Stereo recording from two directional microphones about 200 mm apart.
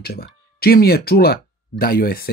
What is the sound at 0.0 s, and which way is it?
Speech, 50° left (ahead or behind).